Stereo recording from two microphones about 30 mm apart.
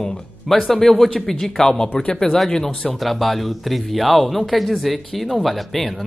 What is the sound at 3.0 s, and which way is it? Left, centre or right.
A man's voice, centre.